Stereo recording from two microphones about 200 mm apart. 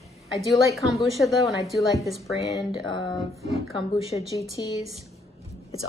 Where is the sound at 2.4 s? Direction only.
25° left (ahead or behind).